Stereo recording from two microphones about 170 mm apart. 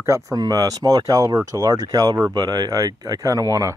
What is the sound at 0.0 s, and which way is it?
Speech, 20° right (ahead or behind).